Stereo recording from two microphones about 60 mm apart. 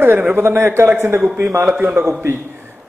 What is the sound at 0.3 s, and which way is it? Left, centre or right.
A man's voice, right.